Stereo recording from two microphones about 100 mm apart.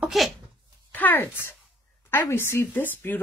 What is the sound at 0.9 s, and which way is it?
A woman's voice, 20° left (ahead or behind).